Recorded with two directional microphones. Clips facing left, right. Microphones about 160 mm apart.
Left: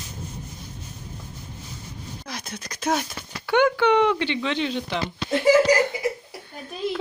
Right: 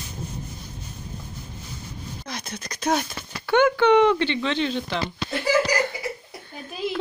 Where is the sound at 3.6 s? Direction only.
5° left (ahead or behind).